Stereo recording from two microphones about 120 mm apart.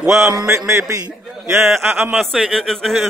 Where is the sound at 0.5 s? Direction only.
25° right (ahead or behind).